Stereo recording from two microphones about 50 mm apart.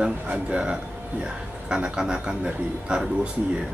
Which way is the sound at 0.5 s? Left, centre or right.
Right.